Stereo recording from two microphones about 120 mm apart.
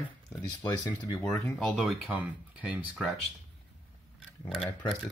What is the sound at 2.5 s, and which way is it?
Speech, 10° right (ahead or behind).